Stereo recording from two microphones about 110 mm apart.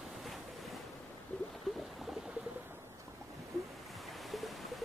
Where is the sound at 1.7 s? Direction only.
Centre (ahead or behind).